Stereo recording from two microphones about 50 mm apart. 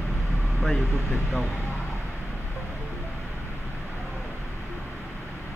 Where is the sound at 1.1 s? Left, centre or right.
Left.